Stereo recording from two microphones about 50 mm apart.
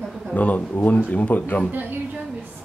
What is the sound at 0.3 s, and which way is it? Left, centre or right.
Speech, left.